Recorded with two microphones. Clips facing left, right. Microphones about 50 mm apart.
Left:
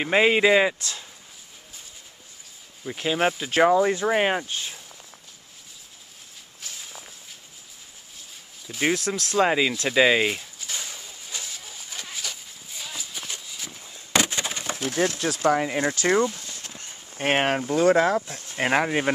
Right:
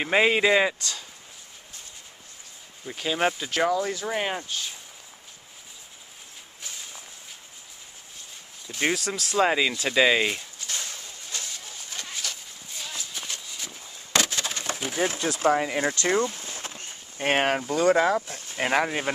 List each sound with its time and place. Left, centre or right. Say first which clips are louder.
0.0 s speech: left 2 dB; centre
2.8 s speech: left 2 dB; centre
3.5 s speech: left 6 dB; left
6.6 s walk: left 1 dB; centre
8.6 s a sound: left 2 dB; centre
14.1 s wood: left 2 dB; centre
14.6 s a sound: left 3 dB; centre
15.5 s speech: left 1 dB; centre
16.3 s a sound: right 2 dB; right
17.2 s speech: left 1 dB; centre